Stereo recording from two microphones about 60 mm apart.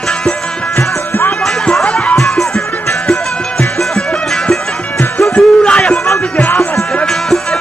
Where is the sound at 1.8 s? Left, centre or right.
Centre.